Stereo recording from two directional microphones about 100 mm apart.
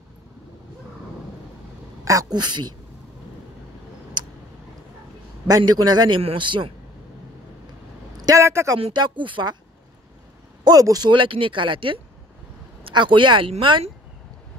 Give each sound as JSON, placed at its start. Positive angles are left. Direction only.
{"t": 2.0, "sound": "speech", "side_deg": -35}
{"t": 5.5, "sound": "speech", "side_deg": -45}
{"t": 8.2, "sound": "a sound", "side_deg": -35}
{"t": 8.9, "sound": "speech", "side_deg": -50}
{"t": 10.6, "sound": "speech", "side_deg": -40}